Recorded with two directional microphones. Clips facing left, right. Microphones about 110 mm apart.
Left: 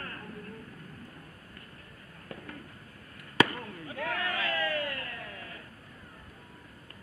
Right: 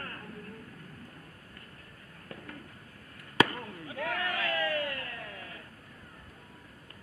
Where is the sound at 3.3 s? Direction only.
25° right (ahead or behind).